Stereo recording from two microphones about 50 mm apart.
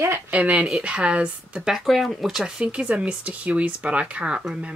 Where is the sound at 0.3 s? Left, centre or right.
Right.